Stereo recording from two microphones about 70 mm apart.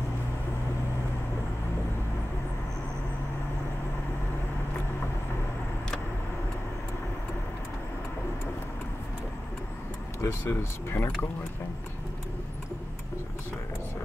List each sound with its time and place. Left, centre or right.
10.2 s speech: left